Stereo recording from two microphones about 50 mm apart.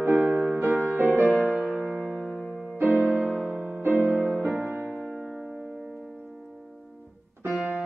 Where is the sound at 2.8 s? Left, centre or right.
Right.